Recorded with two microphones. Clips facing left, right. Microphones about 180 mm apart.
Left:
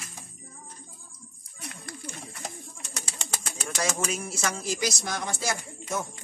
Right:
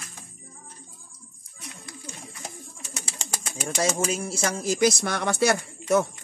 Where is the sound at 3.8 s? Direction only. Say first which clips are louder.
Right 4 dB; 30° right (ahead or behind).